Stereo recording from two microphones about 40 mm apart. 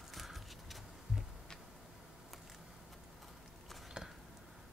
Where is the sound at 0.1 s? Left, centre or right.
Centre.